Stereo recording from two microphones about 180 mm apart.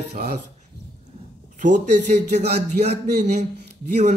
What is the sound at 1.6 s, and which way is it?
A man's voice, 40° right (ahead or behind).